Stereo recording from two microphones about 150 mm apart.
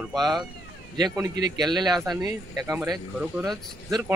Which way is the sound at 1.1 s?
25° right (ahead or behind).